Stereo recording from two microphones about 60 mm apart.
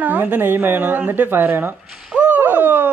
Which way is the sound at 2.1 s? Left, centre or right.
Right.